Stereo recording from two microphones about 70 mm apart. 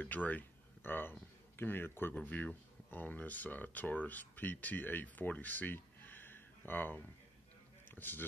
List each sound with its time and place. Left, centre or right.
0.0 s speech: left